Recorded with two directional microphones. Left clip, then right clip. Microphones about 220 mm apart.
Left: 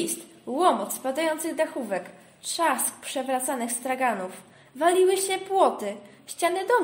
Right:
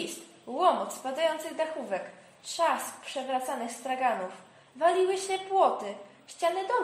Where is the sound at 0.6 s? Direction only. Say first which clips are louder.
Left 3 dB; 50° left (ahead or behind).